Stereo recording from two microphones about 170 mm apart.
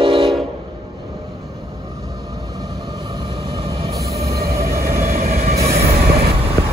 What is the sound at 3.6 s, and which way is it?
Train, 30° right (ahead or behind).